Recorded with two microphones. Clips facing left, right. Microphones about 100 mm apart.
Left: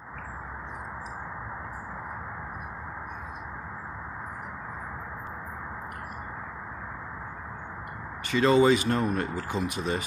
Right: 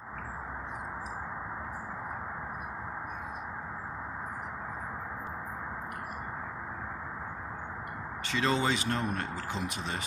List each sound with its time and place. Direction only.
8.3 s speech: 5° left (ahead or behind)
9.3 s speech: 55° left (ahead or behind)